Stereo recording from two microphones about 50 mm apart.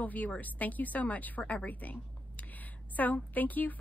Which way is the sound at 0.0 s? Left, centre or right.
Left.